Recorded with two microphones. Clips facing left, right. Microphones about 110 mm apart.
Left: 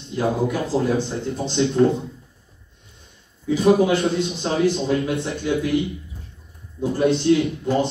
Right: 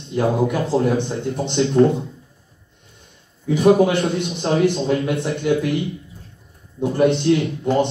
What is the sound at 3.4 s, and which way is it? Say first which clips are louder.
A man's voice: right 2 dB; 60° right (ahead or behind).